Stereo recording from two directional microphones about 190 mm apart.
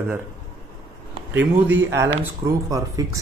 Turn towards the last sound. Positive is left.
turn(degrees=-15)  # may be behind; listen again after turning